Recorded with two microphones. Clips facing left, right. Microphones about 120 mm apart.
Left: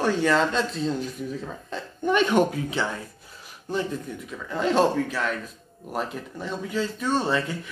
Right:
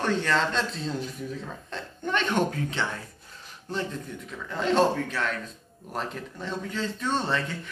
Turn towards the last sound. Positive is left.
turn(degrees=5)  # may be behind; listen again after turning